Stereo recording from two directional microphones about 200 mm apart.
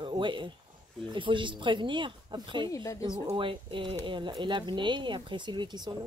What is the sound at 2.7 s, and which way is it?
Speech, 15° left (ahead or behind).